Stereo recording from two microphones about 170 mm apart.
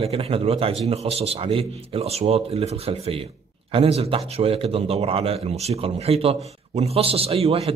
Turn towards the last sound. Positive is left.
turn(degrees=-35)  # may be behind; listen again after turning